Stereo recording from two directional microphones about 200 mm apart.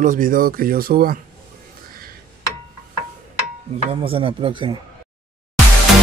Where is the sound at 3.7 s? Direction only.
25° right (ahead or behind).